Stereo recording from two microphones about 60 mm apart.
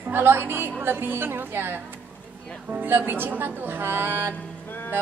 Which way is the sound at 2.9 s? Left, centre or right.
Right.